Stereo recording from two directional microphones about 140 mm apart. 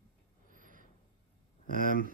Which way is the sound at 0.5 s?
70° right (ahead or behind).